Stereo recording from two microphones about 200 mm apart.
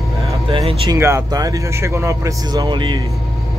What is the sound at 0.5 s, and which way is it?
Speech, 25° right (ahead or behind).